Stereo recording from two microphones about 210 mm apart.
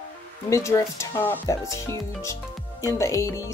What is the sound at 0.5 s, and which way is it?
Speech, 15° left (ahead or behind).